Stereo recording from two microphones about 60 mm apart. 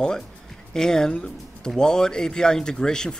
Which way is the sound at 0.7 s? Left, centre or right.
Centre.